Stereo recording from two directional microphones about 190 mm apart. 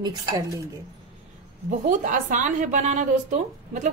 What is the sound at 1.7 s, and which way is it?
A woman's voice, 40° right (ahead or behind).